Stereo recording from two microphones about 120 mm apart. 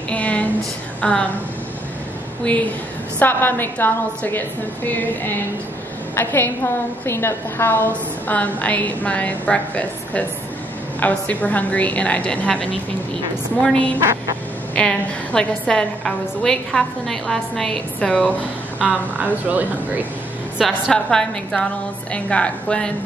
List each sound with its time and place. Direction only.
0.1 s a sound: 10° left (ahead or behind)
1.0 s a woman's voice: 10° left (ahead or behind)
2.4 s a woman's voice: 10° left (ahead or behind)
13.7 s a woman's voice: 10° left (ahead or behind)
18.8 s a woman's voice: 10° right (ahead or behind)
20.5 s a woman's voice: centre (ahead or behind)